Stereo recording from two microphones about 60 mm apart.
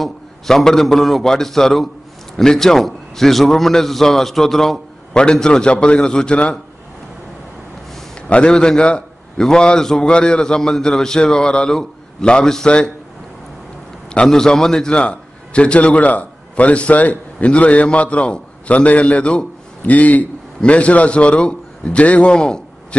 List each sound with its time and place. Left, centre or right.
0.0 s a man's voice: centre
8.3 s a man's voice: centre
14.1 s a man's voice: centre